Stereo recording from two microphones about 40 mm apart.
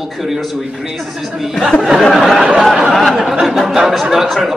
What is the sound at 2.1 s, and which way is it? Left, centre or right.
Speech, centre.